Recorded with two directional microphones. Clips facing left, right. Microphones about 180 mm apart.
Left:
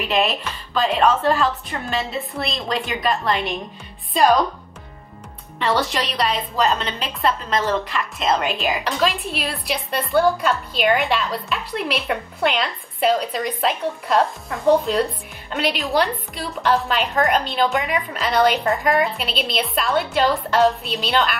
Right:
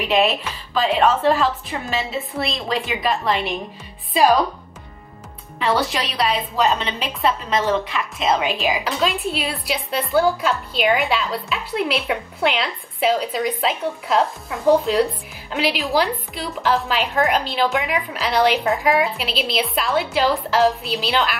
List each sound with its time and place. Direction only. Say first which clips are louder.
0.0 s a woman's voice: right 2 dB; centre (ahead or behind)
5.6 s a woman's voice: even; centre (ahead or behind)